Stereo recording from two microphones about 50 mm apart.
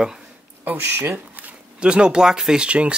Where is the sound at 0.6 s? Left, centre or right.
Right.